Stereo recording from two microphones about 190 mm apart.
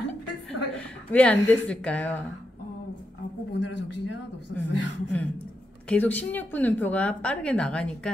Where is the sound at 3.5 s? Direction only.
70° left (ahead or behind).